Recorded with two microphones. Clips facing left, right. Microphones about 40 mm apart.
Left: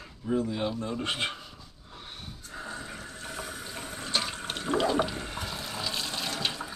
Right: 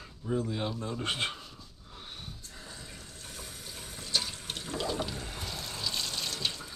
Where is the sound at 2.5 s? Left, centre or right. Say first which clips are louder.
Left 13 dB; left.